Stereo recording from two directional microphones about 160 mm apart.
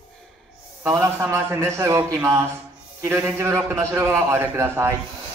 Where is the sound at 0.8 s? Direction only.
15° right (ahead or behind).